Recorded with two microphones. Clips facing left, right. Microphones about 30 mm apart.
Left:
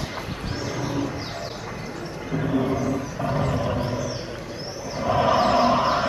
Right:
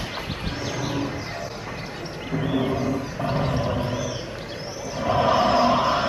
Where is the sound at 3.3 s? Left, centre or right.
Right.